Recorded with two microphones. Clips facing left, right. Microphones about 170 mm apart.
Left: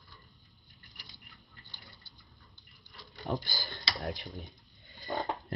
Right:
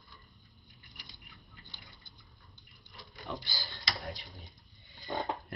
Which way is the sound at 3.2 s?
50° left (ahead or behind).